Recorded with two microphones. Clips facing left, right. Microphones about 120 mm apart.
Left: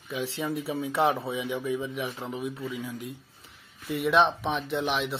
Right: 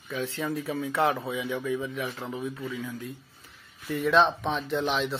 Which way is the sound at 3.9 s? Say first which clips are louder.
Right 1 dB; 15° left (ahead or behind).